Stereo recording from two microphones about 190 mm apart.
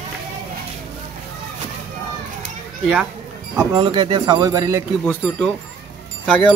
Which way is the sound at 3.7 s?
25° right (ahead or behind).